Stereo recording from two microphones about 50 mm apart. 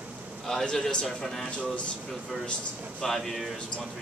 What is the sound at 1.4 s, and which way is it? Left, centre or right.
Speech, left.